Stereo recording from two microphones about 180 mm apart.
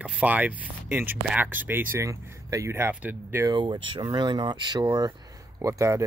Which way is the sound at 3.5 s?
25° right (ahead or behind).